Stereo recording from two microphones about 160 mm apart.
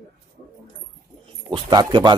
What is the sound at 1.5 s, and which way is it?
Speech, 30° right (ahead or behind).